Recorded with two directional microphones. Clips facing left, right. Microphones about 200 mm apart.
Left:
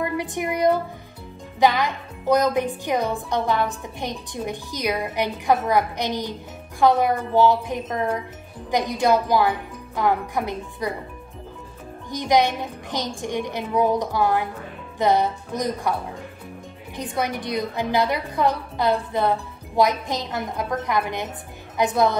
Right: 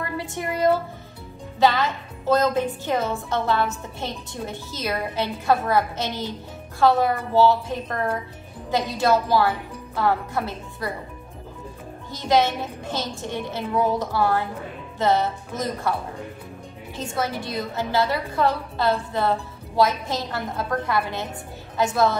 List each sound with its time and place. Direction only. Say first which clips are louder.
0.0 s a woman's voice: left 4 dB; 15° left (ahead or behind)
12.1 s speech: left 1 dB; 15° left (ahead or behind)
16.9 s speech: left 1 dB; 15° left (ahead or behind)